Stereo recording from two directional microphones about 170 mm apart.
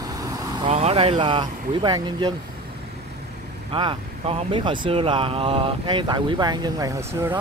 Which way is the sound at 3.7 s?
30° right (ahead or behind).